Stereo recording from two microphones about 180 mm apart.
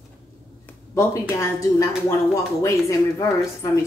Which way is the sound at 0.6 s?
15° left (ahead or behind).